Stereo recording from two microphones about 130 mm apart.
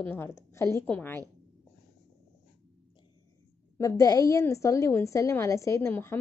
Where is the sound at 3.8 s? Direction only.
25° left (ahead or behind).